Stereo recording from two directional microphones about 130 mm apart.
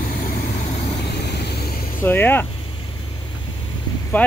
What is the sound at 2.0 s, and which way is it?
Speech, 15° left (ahead or behind).